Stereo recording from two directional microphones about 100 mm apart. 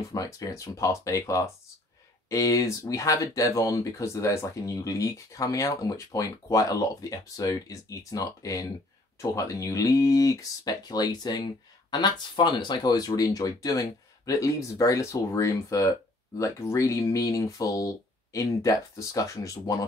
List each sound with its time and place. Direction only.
0.1 s speech: 35° left (ahead or behind)